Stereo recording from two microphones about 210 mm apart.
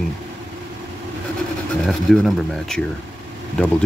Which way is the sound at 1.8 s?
Centre (ahead or behind).